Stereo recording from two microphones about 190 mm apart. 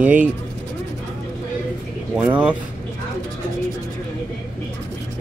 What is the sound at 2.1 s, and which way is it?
Speech, 5° right (ahead or behind).